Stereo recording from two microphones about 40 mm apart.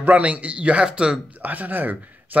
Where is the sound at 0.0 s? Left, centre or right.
Right.